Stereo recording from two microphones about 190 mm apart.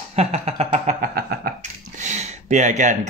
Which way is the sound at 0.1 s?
30° right (ahead or behind).